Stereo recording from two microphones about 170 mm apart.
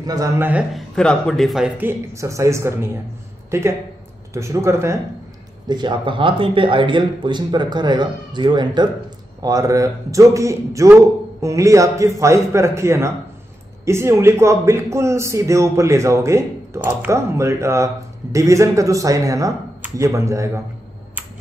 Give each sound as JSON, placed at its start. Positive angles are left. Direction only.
{"t": 0.0, "sound": "a man's voice", "side_deg": -20}
{"t": 0.5, "sound": "speech", "side_deg": -5}
{"t": 0.9, "sound": "a man's voice", "side_deg": 5}